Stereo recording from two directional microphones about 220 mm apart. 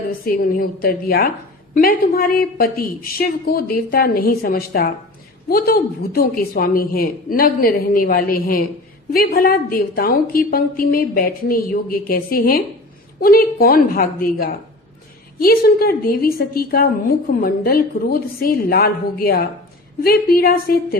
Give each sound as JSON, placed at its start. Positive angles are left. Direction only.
{"t": 0.2, "sound": "a woman's voice", "side_deg": 40}